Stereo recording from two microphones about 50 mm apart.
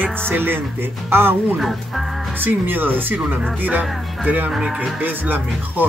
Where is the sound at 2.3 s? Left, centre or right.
Right.